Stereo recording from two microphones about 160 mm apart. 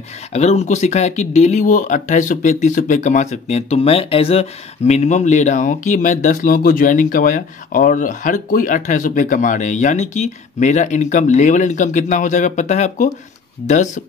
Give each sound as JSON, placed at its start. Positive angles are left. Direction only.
{"t": 0.3, "sound": "speech", "side_deg": 45}